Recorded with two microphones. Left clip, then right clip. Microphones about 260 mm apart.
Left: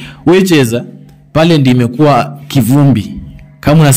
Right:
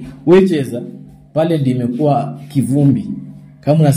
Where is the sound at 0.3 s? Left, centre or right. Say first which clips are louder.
Left 3 dB; left.